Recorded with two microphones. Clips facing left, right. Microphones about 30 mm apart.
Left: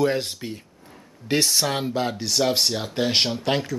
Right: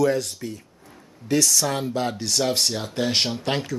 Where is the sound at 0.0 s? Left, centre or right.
Left.